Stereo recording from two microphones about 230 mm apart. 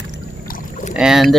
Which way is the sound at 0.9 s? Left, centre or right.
Centre.